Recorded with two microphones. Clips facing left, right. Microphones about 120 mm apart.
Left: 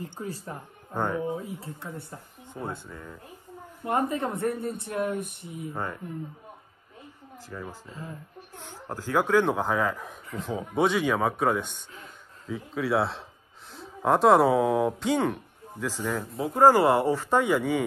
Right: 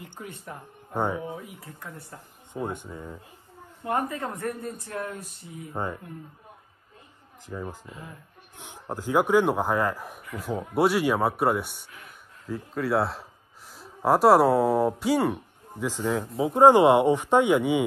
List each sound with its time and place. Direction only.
0.0 s speech: 35° left (ahead or behind)
0.9 s speech: 15° right (ahead or behind)
1.2 s speech: 25° left (ahead or behind)
2.5 s speech: 15° right (ahead or behind)
3.9 s speech: 25° left (ahead or behind)
5.7 s speech: 20° right (ahead or behind)
7.4 s speech: 15° right (ahead or behind)